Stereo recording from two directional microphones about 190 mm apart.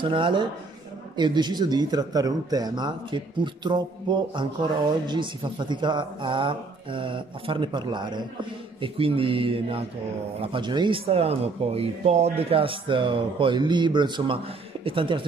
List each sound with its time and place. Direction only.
0.0 s speech: 25° right (ahead or behind)